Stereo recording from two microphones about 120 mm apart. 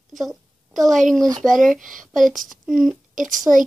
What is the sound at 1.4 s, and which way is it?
Speech, centre (ahead or behind).